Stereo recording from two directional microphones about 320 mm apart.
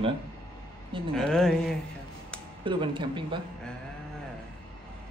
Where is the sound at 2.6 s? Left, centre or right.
Centre.